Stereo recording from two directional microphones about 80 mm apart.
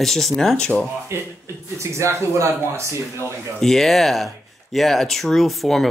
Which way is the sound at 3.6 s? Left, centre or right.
Centre.